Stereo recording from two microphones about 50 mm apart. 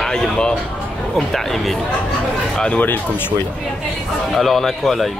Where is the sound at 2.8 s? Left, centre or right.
Left.